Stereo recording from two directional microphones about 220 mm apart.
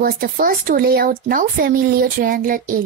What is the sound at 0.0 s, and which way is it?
Speech, 40° right (ahead or behind).